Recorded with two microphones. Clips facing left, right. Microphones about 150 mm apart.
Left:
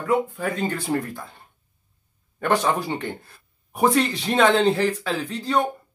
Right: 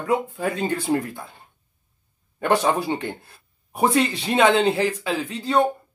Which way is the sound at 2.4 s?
20° right (ahead or behind).